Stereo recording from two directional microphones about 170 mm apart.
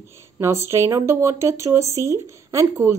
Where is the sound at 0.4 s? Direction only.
15° right (ahead or behind).